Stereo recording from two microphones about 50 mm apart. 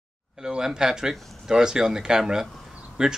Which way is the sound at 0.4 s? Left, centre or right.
Centre.